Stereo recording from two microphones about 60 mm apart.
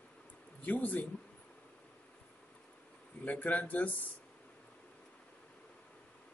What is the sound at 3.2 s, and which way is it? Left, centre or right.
Speech, left.